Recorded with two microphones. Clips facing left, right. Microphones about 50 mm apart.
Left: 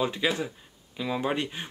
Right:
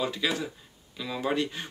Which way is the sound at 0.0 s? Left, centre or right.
Left.